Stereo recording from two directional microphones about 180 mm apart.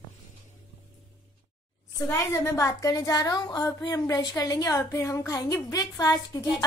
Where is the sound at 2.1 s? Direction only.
15° left (ahead or behind).